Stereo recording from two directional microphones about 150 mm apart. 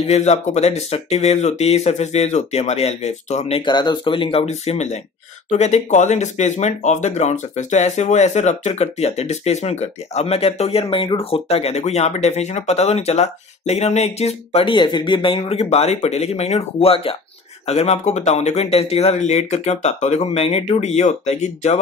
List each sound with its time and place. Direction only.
0.0 s speech: 50° left (ahead or behind)
3.7 s speech: 30° left (ahead or behind); by 21.7 s 50° left (ahead or behind)